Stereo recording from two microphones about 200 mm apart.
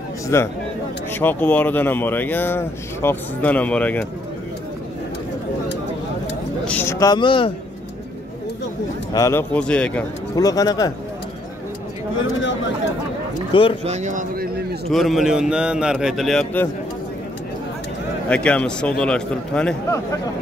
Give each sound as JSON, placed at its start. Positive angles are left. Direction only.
{"t": 0.3, "sound": "speech", "side_deg": 15}
{"t": 6.6, "sound": "a man's voice", "side_deg": 10}
{"t": 9.1, "sound": "speech", "side_deg": 15}
{"t": 10.3, "sound": "speech", "side_deg": 20}
{"t": 13.5, "sound": "speech", "side_deg": 25}
{"t": 13.8, "sound": "speech", "side_deg": -35}
{"t": 14.9, "sound": "a man's voice", "side_deg": 0}
{"t": 18.3, "sound": "a man's voice", "side_deg": 5}